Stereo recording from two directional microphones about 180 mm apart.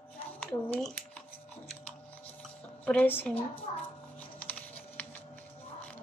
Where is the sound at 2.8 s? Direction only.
10° left (ahead or behind).